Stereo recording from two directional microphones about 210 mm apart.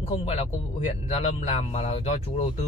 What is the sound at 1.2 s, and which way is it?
A man's voice, 30° left (ahead or behind).